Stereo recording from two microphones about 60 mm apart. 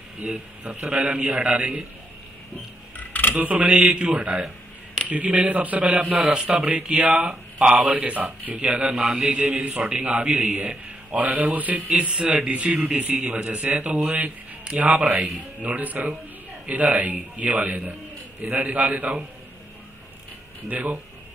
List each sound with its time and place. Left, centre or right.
0.2 s a man's voice: centre
3.0 s a sound: left
3.3 s a man's voice: right
20.6 s a man's voice: right